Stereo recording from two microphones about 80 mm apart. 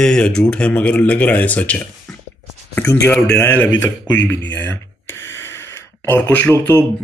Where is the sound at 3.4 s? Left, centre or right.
Left.